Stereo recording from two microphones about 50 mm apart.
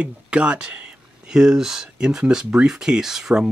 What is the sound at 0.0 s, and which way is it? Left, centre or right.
Speech, right.